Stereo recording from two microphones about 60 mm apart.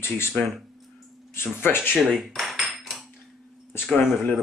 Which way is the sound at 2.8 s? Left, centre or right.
Centre.